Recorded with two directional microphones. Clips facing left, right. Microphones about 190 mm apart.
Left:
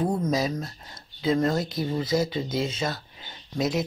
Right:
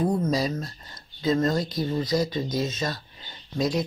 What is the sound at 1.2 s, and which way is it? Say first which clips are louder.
Speech: even; 10° left (ahead or behind).